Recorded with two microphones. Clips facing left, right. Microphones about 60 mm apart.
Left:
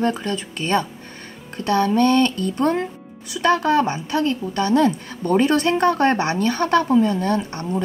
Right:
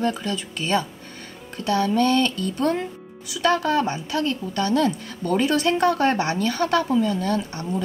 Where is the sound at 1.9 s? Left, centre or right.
Left.